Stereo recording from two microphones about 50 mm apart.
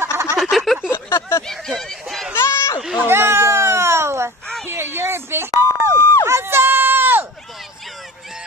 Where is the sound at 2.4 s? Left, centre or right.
Left.